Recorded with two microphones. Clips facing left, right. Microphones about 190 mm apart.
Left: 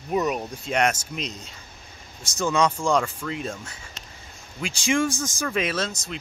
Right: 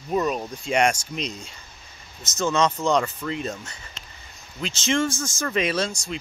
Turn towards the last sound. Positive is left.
turn(degrees=0)  # may be behind; listen again after turning